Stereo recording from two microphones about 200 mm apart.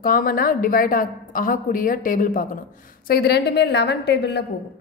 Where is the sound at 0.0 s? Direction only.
45° left (ahead or behind).